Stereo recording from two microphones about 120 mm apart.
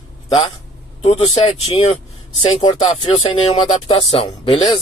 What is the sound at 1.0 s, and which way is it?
Speech, 55° left (ahead or behind).